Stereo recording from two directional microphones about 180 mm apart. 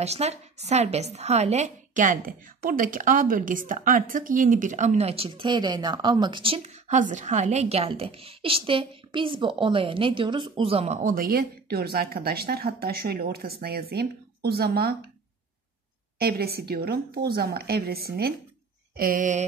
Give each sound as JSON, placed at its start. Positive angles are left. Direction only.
{"t": 0.0, "sound": "a woman's voice", "side_deg": -35}
{"t": 16.2, "sound": "speech", "side_deg": -60}
{"t": 18.9, "sound": "a sound", "side_deg": -50}